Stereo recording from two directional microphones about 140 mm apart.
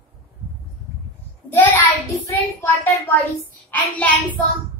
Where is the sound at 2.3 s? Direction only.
15° left (ahead or behind).